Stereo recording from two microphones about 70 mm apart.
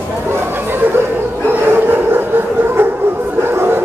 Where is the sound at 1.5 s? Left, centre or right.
Right.